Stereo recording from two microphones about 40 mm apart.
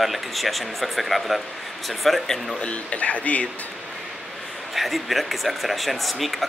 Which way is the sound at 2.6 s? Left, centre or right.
Left.